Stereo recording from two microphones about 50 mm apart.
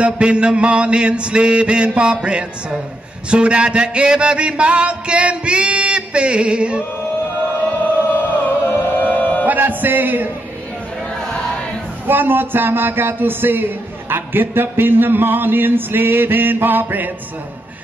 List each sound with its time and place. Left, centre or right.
0.0 s music: right
3.3 s music: right
8.2 s music: left
9.5 s a sound: right
11.1 s music: centre
12.1 s speech: right